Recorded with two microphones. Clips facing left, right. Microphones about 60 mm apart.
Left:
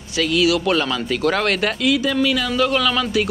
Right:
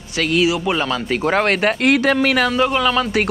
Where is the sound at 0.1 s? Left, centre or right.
Right.